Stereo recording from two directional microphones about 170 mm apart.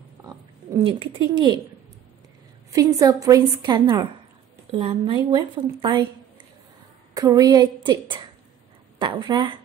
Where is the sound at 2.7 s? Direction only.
20° right (ahead or behind).